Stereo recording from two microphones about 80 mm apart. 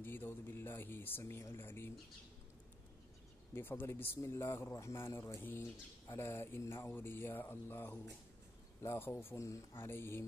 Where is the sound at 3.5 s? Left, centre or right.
Left.